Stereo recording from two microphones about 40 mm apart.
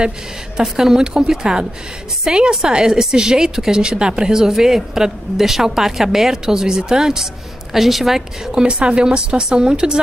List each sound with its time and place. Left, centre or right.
0.6 s a woman's voice: centre
8.5 s a woman's voice: right